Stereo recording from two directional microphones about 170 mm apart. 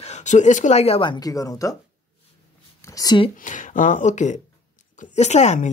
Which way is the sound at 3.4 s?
50° left (ahead or behind).